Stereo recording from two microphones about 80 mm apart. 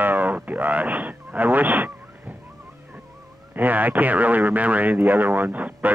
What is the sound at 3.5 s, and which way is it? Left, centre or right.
Speech, right.